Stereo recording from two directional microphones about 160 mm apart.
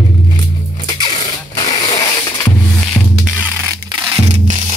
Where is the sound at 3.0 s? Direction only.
Centre (ahead or behind).